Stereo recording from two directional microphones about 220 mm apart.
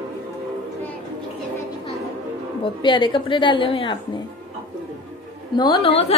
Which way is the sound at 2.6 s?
20° left (ahead or behind).